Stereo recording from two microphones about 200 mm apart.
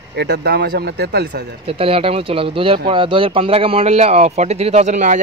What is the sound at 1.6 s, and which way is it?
Speech, 30° right (ahead or behind).